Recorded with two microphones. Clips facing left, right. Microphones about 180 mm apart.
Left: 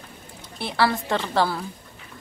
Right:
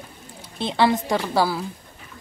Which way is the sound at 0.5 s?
20° right (ahead or behind).